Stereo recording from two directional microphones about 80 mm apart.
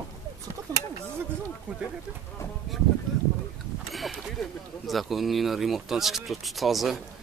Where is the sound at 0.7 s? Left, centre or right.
Right.